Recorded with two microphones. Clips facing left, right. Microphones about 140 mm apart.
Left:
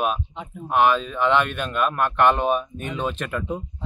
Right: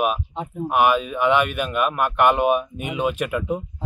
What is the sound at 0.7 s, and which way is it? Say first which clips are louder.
Speech: even; 10° right (ahead or behind).